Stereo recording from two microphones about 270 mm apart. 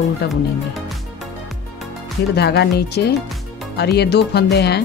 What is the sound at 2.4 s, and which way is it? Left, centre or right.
A woman's voice, left.